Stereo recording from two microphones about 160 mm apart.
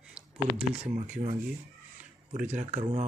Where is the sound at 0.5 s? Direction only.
45° right (ahead or behind).